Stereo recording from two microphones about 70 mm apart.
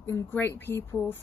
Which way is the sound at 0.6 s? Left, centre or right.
Left.